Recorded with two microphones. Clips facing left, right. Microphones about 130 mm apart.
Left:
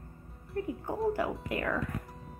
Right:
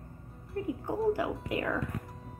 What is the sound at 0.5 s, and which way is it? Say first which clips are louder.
A woman's voice: right 1 dB; 20° right (ahead or behind).